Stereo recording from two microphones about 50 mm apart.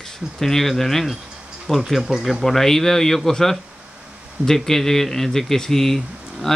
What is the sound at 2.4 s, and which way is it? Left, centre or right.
Speech, centre.